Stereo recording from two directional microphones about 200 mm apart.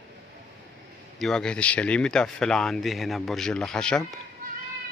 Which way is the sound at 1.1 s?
5° left (ahead or behind).